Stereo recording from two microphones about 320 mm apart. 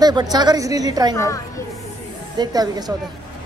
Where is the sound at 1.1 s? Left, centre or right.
Centre.